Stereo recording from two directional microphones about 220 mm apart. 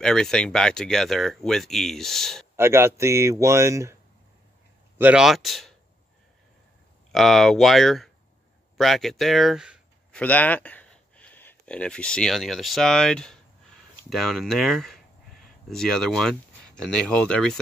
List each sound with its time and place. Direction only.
0.0 s speech: 5° left (ahead or behind)
2.5 s speech: 10° right (ahead or behind)
4.9 s speech: 5° right (ahead or behind)
7.1 s a man's voice: centre (ahead or behind)